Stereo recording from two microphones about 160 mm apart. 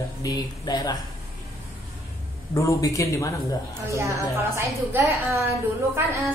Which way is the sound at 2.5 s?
20° left (ahead or behind).